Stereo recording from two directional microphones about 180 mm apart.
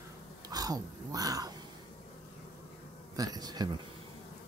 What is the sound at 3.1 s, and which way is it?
Speech, 20° right (ahead or behind).